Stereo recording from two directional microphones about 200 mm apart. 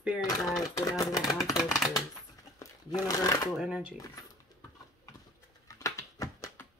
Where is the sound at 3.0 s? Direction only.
15° left (ahead or behind).